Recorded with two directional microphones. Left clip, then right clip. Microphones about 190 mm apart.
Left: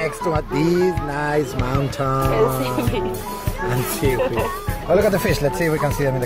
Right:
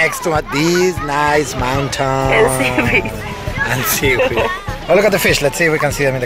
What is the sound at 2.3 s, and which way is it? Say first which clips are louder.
Speech: right 6 dB; 10° right (ahead or behind).